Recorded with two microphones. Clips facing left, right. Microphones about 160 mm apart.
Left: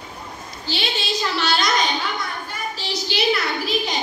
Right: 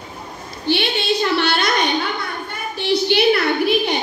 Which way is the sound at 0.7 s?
60° right (ahead or behind).